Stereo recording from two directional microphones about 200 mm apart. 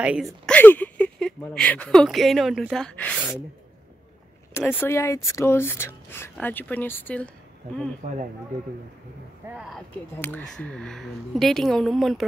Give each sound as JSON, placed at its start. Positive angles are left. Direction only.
{"t": 0.0, "sound": "speech", "side_deg": -5}
{"t": 0.5, "sound": "speech", "side_deg": 10}
{"t": 4.6, "sound": "speech", "side_deg": 10}
{"t": 8.0, "sound": "speech", "side_deg": -35}
{"t": 10.1, "sound": "speech", "side_deg": 10}